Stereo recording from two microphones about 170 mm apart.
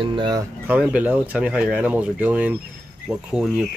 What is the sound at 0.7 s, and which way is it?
Speech, 10° right (ahead or behind).